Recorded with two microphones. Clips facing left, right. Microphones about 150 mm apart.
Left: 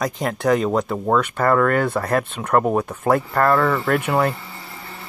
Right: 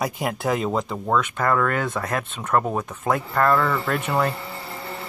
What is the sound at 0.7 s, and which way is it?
Speech, 5° left (ahead or behind).